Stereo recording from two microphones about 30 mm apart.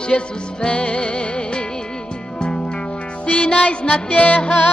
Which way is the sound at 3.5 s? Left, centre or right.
Left.